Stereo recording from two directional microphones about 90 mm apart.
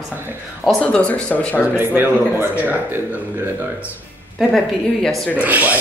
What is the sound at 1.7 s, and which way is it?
A man's voice, 25° right (ahead or behind).